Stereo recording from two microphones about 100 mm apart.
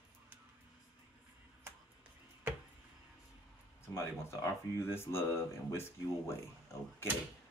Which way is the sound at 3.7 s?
25° left (ahead or behind).